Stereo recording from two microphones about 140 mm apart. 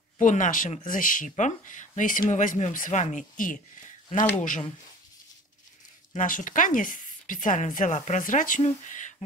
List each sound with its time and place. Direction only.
0.2 s a woman's voice: 65° left (ahead or behind)
6.1 s a woman's voice: 70° left (ahead or behind)